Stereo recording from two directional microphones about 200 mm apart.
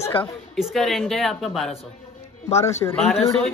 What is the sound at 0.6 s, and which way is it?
A woman's voice, centre (ahead or behind).